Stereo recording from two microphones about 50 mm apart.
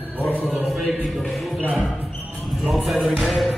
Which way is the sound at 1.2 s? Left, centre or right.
Centre.